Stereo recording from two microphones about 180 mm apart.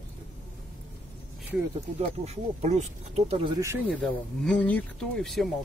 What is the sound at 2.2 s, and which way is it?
Speech, 35° right (ahead or behind).